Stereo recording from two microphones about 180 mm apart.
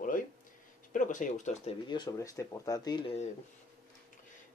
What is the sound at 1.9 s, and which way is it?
Speech, 20° left (ahead or behind).